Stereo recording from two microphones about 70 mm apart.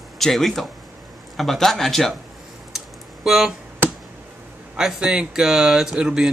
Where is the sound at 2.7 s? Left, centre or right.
Centre.